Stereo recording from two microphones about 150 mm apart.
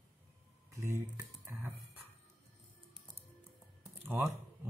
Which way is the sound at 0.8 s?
20° right (ahead or behind).